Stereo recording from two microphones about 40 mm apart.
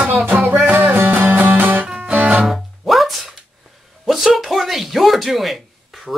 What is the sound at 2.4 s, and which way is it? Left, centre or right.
Music, centre.